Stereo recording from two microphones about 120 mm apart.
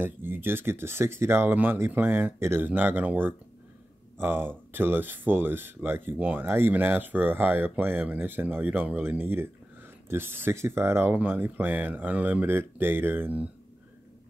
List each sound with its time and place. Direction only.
0.0 s speech: 15° right (ahead or behind)